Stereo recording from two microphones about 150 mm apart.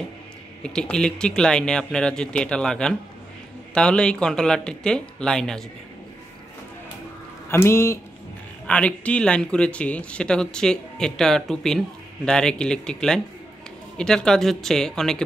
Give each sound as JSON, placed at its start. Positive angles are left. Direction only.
{"t": 0.6, "sound": "speech", "side_deg": 5}
{"t": 7.4, "sound": "speech", "side_deg": 15}
{"t": 8.6, "sound": "speech", "side_deg": 10}